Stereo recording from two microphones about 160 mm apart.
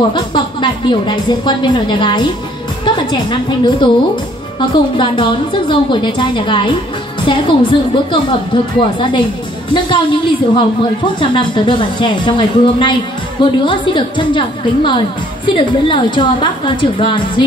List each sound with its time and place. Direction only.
0.1 s a woman's voice: 30° left (ahead or behind)